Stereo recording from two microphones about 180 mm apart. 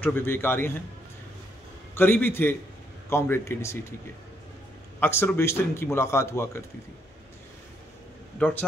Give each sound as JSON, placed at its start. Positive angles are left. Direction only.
{"t": 0.0, "sound": "a man's voice", "side_deg": 10}
{"t": 2.0, "sound": "a man's voice", "side_deg": 10}
{"t": 5.0, "sound": "a man's voice", "side_deg": 10}
{"t": 8.4, "sound": "a man's voice", "side_deg": 10}